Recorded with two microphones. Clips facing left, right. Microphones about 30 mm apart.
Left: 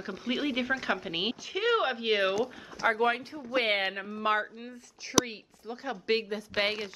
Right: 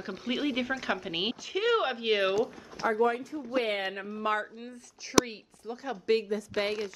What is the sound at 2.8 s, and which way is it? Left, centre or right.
Speech, left.